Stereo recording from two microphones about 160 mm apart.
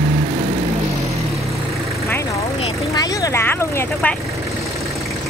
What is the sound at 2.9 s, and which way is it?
Vehicle, 25° left (ahead or behind).